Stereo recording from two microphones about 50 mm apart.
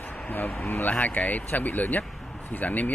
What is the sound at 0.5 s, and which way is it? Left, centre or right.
Speech, left.